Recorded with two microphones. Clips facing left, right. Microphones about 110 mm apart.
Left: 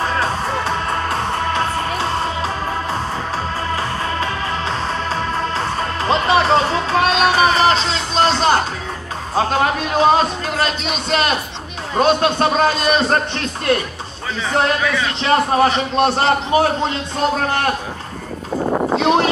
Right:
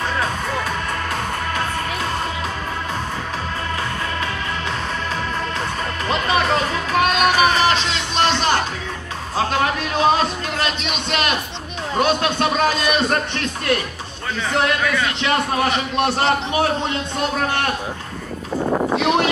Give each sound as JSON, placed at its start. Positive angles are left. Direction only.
{"t": 0.2, "sound": "music", "side_deg": 30}
{"t": 6.0, "sound": "music", "side_deg": 30}
{"t": 12.0, "sound": "a man's voice", "side_deg": 35}
{"t": 14.8, "sound": "a man's voice", "side_deg": 0}
{"t": 15.2, "sound": "a man's voice", "side_deg": 35}
{"t": 18.5, "sound": "a sound", "side_deg": 15}
{"t": 18.9, "sound": "a sound", "side_deg": 35}